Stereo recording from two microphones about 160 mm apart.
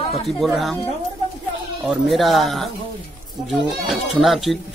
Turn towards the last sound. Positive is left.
turn(degrees=0)  # may be behind; listen again after turning